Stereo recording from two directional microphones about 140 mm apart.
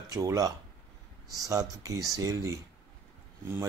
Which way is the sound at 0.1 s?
25° right (ahead or behind).